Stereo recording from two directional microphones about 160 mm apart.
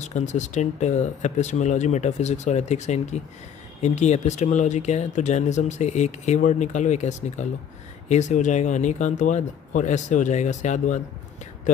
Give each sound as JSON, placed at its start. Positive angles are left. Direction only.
{"t": 0.0, "sound": "speech", "side_deg": 45}